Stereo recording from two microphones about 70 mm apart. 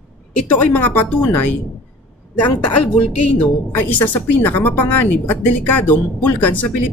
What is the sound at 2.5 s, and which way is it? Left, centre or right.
Speech, centre.